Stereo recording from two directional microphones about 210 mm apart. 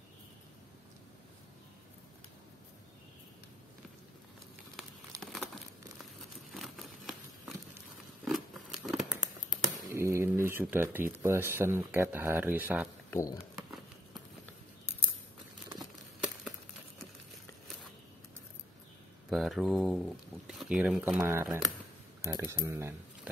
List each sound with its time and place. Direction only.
5.2 s crumpling: centre (ahead or behind)
6.5 s a sound: centre (ahead or behind)
8.3 s patter: centre (ahead or behind)
9.9 s speech: 15° right (ahead or behind)
13.1 s speech: 15° left (ahead or behind)
19.3 s speech: centre (ahead or behind)